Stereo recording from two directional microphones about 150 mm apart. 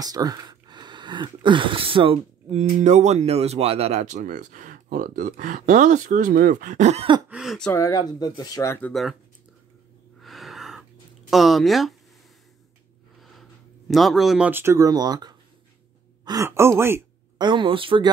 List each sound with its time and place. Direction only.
0.0 s speech: 25° right (ahead or behind)
2.5 s speech: 50° right (ahead or behind)
7.2 s speech: 5° right (ahead or behind)
7.7 s speech: 25° left (ahead or behind)
8.8 s speech: centre (ahead or behind)
10.2 s a sound: centre (ahead or behind)
13.2 s a sound: centre (ahead or behind)
14.5 s speech: 15° right (ahead or behind)
17.4 s speech: 30° right (ahead or behind)